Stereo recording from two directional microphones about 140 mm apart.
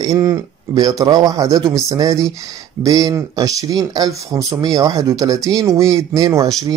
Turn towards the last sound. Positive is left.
turn(degrees=-25)  # may be behind; listen again after turning